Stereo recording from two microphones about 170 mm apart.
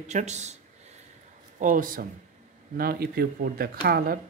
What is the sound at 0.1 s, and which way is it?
Speech, 45° right (ahead or behind).